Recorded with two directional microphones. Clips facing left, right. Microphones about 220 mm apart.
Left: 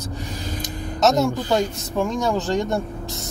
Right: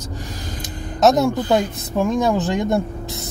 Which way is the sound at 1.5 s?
15° right (ahead or behind).